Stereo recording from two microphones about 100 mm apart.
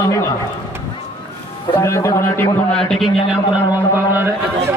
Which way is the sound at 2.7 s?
5° left (ahead or behind).